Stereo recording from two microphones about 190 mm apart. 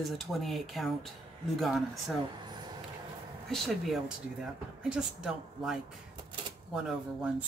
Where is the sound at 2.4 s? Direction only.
20° right (ahead or behind).